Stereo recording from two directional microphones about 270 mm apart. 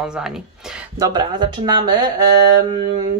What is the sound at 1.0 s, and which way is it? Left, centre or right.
Speech, centre.